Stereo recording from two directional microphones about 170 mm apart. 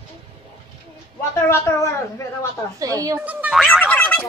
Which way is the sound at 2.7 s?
20° right (ahead or behind).